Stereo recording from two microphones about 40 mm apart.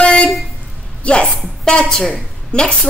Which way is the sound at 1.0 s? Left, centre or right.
Left.